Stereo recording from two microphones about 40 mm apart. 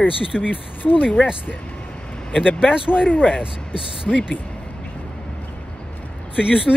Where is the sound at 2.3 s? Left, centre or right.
Centre.